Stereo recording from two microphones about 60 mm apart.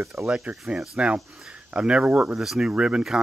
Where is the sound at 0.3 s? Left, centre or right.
Centre.